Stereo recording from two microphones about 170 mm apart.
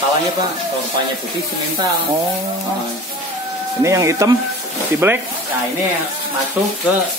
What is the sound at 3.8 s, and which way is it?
Speech, 15° right (ahead or behind).